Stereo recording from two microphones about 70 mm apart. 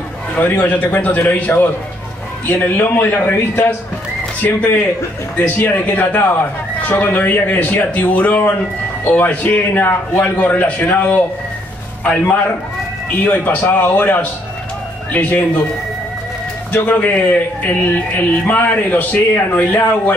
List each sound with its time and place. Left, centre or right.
0.4 s a man's voice: left
4.4 s a man's voice: left
16.7 s a man's voice: left